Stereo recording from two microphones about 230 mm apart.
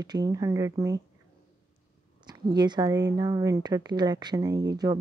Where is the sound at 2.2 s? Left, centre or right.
Centre.